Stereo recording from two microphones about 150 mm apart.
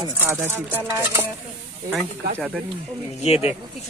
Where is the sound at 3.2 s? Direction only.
45° left (ahead or behind).